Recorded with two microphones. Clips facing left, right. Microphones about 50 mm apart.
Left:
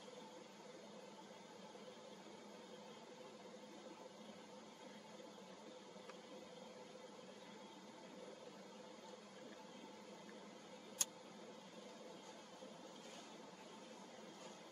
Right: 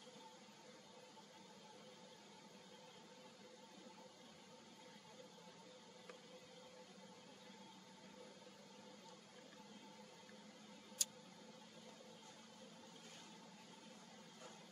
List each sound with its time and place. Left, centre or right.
11.0 s vehicle: left